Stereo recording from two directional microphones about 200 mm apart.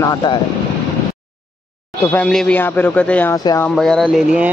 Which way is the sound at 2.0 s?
10° left (ahead or behind).